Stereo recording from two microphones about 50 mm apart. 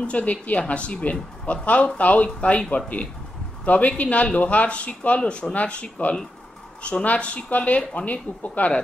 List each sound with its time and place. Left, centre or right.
0.0 s speech: left